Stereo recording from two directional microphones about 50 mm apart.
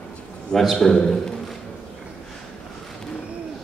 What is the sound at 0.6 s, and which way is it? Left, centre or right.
Speech, centre.